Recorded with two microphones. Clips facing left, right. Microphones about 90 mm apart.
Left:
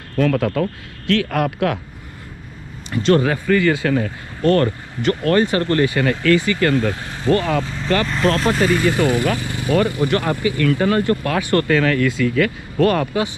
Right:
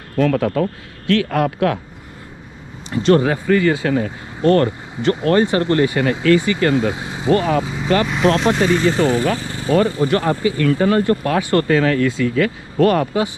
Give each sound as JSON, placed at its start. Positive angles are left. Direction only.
{"t": 0.1, "sound": "speech", "side_deg": -30}
{"t": 3.0, "sound": "speech", "side_deg": -25}
{"t": 7.6, "sound": "vehicle", "side_deg": -10}
{"t": 8.4, "sound": "speech", "side_deg": 0}
{"t": 8.8, "sound": "speech", "side_deg": -20}